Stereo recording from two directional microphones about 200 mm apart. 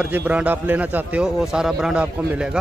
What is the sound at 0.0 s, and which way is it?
A man's voice, 5° right (ahead or behind).